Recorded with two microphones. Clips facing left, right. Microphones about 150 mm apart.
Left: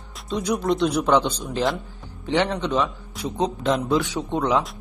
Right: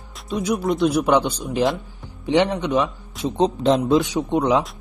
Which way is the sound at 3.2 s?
25° right (ahead or behind).